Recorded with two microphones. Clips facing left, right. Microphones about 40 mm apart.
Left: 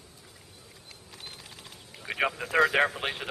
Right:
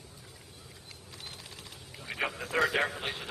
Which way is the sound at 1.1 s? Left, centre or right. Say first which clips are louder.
Left 1 dB; centre.